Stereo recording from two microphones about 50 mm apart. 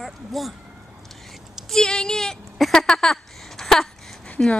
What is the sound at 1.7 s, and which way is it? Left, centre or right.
Speech, centre.